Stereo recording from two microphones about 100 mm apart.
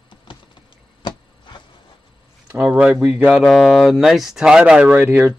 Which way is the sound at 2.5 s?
10° right (ahead or behind).